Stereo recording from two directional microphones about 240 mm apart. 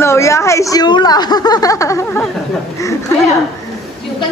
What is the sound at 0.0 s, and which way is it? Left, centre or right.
Speech, centre.